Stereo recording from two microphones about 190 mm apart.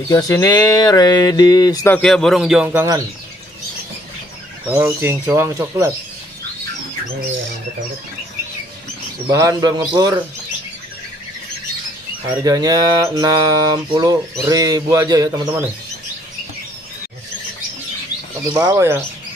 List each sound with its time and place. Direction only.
0.1 s a sound: 15° left (ahead or behind)
2.0 s a man's voice: 5° left (ahead or behind)
4.6 s speech: 10° right (ahead or behind)
9.3 s mantra: 20° right (ahead or behind)
12.4 s mantra: 20° right (ahead or behind)
18.5 s speech: 20° right (ahead or behind)